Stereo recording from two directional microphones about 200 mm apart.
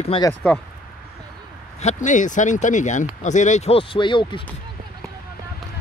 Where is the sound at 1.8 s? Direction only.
35° left (ahead or behind).